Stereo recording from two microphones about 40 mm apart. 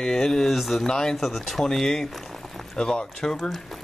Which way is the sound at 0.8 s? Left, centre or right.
Centre.